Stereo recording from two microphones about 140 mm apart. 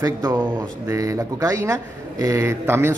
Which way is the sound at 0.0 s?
25° right (ahead or behind).